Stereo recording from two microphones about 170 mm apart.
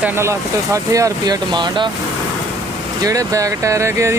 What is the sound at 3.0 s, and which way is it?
Speech, 20° right (ahead or behind).